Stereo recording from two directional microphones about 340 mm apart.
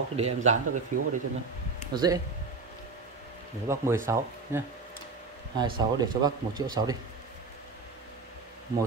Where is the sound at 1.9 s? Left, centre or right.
Centre.